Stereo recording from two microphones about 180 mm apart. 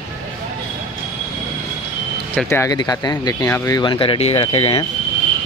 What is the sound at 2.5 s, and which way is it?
Speech, 15° left (ahead or behind).